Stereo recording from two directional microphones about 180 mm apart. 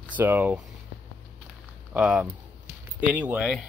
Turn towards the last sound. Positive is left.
turn(degrees=-5)  # may be behind; listen again after turning